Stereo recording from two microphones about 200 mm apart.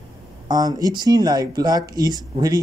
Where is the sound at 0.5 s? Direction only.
20° right (ahead or behind).